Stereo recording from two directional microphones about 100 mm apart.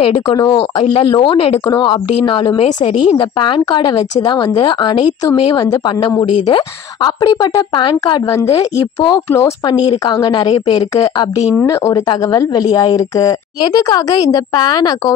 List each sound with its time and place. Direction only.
0.0 s a woman's voice: 50° left (ahead or behind)